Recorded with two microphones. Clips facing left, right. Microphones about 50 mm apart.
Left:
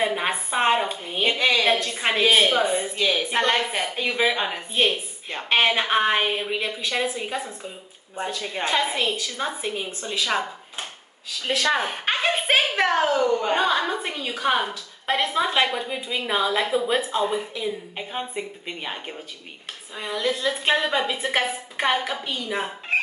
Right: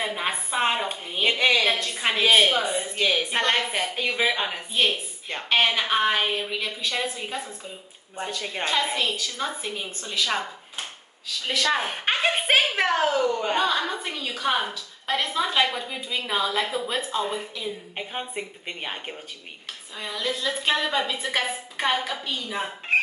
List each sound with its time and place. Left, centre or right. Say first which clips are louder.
0.0 s a woman's voice: left 4 dB; centre
1.2 s a woman's voice: even; centre
2.2 s a woman's voice: even; centre
2.6 s a woman's voice: left 4 dB; centre
3.0 s a woman's voice: even; centre
5.4 s a woman's voice: left 2 dB; left
11.4 s a woman's voice: left 2 dB; centre
11.8 s a sound: even; centre
13.1 s a woman's voice: left 3 dB; centre
13.6 s a woman's voice: left 2 dB; centre
17.9 s a woman's voice: left 2 dB; centre
20.0 s a woman's voice: left 4 dB; left